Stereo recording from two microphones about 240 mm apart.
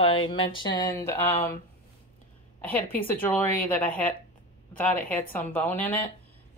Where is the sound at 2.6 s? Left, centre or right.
Centre.